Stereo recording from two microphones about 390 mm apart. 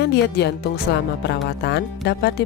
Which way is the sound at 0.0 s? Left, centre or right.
Left.